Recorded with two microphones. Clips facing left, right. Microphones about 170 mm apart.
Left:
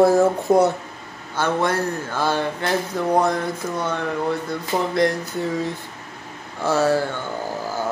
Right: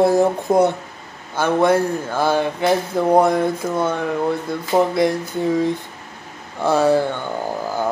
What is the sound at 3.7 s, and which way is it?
Speech, 10° right (ahead or behind).